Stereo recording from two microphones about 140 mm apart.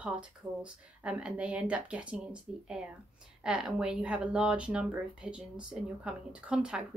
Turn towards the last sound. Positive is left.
turn(degrees=-5)  # may be behind; listen again after turning